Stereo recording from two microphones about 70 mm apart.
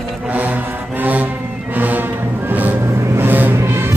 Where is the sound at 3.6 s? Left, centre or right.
Right.